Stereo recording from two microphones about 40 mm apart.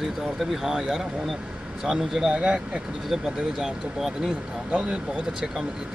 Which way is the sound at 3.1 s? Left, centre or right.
Centre.